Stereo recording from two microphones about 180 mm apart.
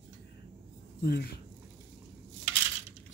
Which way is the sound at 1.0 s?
60° left (ahead or behind).